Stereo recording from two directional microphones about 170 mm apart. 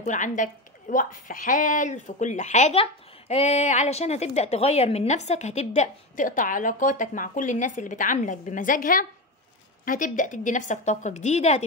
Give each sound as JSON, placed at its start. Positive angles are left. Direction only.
{"t": 0.0, "sound": "a woman's voice", "side_deg": 50}